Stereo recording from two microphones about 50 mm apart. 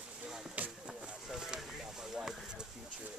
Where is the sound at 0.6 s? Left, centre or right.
Right.